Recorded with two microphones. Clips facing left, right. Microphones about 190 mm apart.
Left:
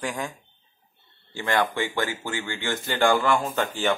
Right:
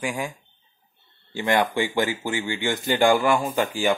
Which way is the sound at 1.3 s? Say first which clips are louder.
Right 3 dB; 15° right (ahead or behind).